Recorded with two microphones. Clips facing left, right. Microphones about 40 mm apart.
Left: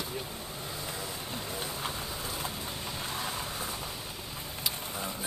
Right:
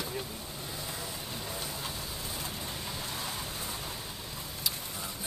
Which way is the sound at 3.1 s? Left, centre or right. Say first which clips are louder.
Left 3 dB; centre.